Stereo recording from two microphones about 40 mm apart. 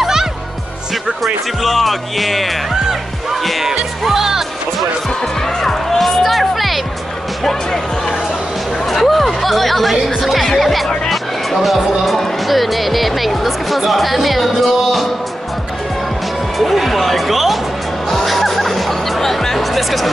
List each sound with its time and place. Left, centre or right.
0.0 s music: centre
1.2 s speech: centre
2.7 s music: centre
5.2 s music: centre
8.8 s music: centre
12.4 s speech: centre
16.5 s music: centre